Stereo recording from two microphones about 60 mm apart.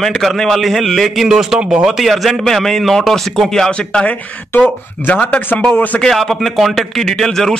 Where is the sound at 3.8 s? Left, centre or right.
Centre.